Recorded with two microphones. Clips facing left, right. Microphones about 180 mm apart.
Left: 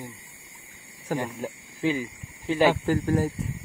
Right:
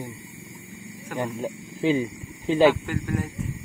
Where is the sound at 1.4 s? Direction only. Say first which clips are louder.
Right 2 dB; 20° right (ahead or behind).